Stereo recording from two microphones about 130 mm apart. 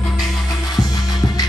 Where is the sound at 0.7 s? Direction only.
30° left (ahead or behind).